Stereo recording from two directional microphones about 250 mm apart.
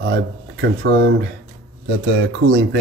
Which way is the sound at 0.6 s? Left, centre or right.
Right.